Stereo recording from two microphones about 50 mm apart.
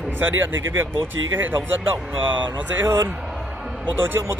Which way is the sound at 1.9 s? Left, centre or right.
Right.